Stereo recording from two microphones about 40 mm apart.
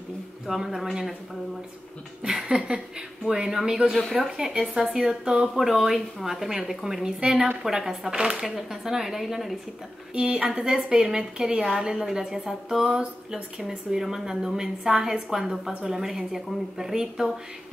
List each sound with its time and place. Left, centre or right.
0.5 s a woman's voice: centre
2.3 s a woman's voice: centre
8.5 s a woman's voice: centre
10.1 s a woman's voice: right